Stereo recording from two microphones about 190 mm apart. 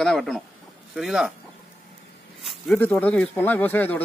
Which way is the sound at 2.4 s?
5° left (ahead or behind).